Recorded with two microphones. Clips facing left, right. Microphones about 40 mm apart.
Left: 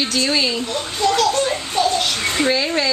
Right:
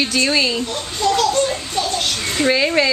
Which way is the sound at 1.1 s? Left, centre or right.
Centre.